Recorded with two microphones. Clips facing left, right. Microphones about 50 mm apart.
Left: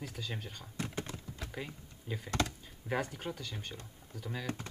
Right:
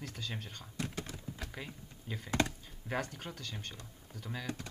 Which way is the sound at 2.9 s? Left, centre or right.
Centre.